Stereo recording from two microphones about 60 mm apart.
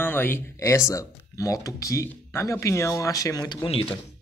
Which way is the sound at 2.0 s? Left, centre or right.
Left.